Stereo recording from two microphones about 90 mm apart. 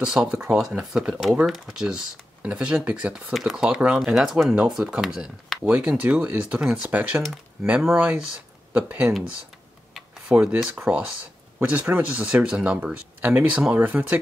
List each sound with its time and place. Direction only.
0.0 s speech: 5° right (ahead or behind)
10.3 s speech: 15° right (ahead or behind)